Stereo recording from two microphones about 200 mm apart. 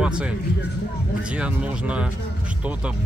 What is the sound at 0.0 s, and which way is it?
Speech, 5° right (ahead or behind).